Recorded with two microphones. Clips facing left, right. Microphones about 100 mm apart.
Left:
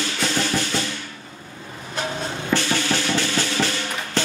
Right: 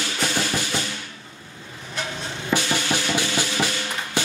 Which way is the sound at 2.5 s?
15° right (ahead or behind).